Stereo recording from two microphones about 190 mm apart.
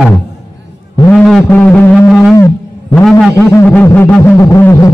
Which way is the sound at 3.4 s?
15° left (ahead or behind).